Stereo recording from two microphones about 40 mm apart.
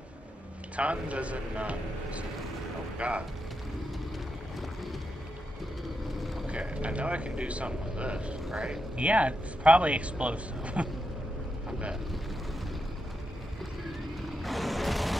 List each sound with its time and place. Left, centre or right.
0.7 s speech: right
6.4 s speech: right
14.4 s mechanisms: centre